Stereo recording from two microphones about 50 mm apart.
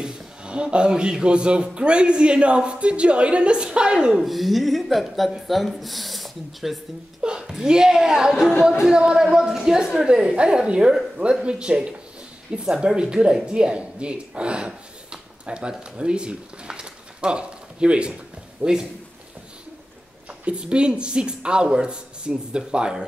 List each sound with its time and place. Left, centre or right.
0.0 s speech: centre
4.2 s speech: centre
7.2 s a woman's voice: centre
20.4 s speech: right